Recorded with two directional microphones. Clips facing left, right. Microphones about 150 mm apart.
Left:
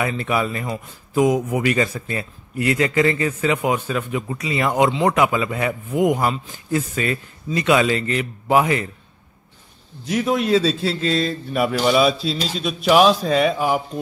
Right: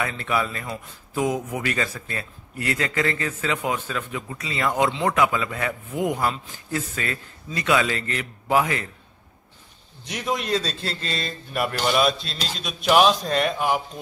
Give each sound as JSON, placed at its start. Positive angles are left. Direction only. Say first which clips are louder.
{"t": 0.0, "sound": "a man's voice", "louder": "left 4 dB", "side_deg": 15}
{"t": 10.0, "sound": "a man's voice", "louder": "left 7 dB", "side_deg": 0}